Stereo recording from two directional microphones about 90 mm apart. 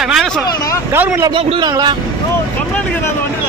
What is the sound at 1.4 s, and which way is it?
Speech, 90° right.